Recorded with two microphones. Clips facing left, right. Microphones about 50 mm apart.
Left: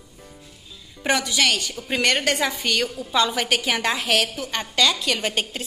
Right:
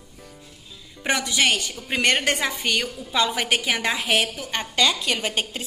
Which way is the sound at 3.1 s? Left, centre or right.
Right.